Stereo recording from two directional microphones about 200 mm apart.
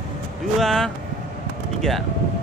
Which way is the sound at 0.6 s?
Centre (ahead or behind).